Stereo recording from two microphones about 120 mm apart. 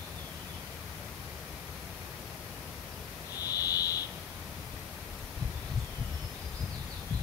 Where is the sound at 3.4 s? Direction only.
30° left (ahead or behind).